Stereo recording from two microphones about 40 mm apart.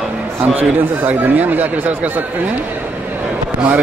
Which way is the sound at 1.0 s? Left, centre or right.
Right.